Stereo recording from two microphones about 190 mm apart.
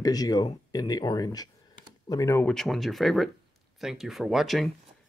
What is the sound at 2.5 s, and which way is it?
Speech, centre (ahead or behind).